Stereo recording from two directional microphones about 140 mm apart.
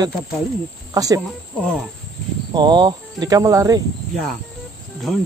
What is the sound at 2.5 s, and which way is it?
Speech, 30° right (ahead or behind).